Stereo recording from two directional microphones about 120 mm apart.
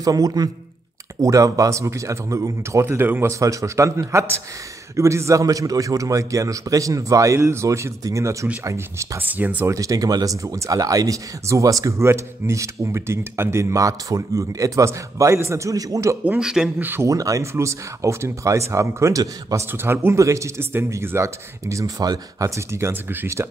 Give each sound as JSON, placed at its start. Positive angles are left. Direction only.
{"t": 0.0, "sound": "a man's voice", "side_deg": -30}
{"t": 9.3, "sound": "speech", "side_deg": -15}
{"t": 9.8, "sound": "speech", "side_deg": -30}
{"t": 16.3, "sound": "speech", "side_deg": -5}
{"t": 16.7, "sound": "speech", "side_deg": -20}